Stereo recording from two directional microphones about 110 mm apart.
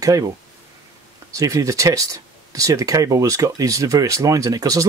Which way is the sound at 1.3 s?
30° right (ahead or behind).